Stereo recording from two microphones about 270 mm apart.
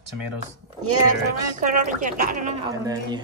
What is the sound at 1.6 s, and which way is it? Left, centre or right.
Speech, right.